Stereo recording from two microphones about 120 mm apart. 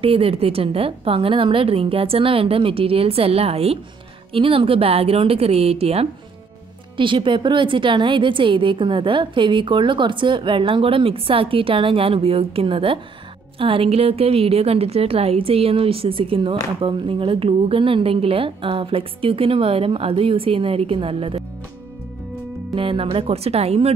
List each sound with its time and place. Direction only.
0.0 s a woman's voice: 55° right (ahead or behind)
7.0 s a woman's voice: 45° right (ahead or behind)
22.8 s a woman's voice: 50° right (ahead or behind)